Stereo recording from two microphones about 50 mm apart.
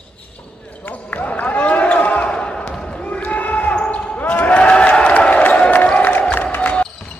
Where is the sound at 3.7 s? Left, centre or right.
Left.